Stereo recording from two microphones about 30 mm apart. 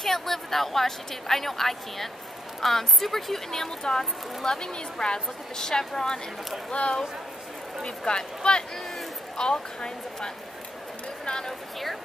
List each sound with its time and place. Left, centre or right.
0.0 s a woman's voice: centre
4.5 s a woman's voice: left
6.7 s a woman's voice: left